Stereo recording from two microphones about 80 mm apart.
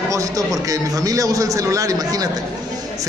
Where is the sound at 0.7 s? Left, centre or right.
Right.